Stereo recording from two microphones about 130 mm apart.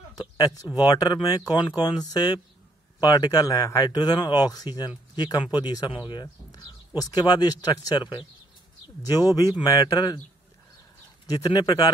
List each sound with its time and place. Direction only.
0.2 s speech: 25° left (ahead or behind)
11.2 s speech: 30° left (ahead or behind)